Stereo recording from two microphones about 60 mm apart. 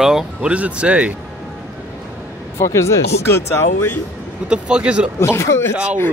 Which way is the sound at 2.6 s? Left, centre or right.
Left.